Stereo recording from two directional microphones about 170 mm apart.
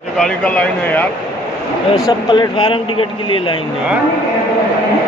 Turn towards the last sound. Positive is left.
turn(degrees=30)  # may be behind; listen again after turning